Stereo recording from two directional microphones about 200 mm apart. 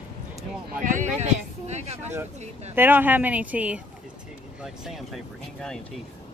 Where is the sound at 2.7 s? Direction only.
10° right (ahead or behind).